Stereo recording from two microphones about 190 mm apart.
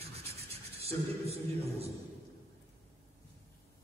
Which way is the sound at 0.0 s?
30° right (ahead or behind).